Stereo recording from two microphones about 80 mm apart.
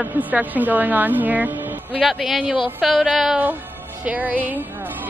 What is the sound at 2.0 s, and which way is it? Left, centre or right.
A man's voice, centre.